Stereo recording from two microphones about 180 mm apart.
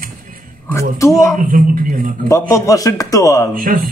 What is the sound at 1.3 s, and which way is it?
Speech, 50° right (ahead or behind).